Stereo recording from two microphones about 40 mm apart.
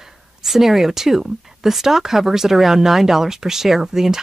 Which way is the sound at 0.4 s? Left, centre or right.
Centre.